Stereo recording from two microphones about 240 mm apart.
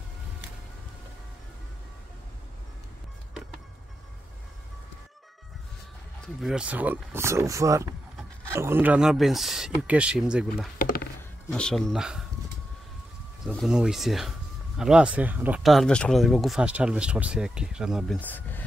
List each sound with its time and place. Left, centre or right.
6.2 s speech: centre
10.8 s a sound: left
11.4 s speech: centre
13.5 s speech: centre